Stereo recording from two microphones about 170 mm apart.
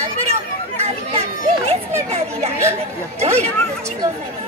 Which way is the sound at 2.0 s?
40° right (ahead or behind).